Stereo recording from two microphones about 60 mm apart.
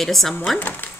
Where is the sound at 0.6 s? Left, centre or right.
Left.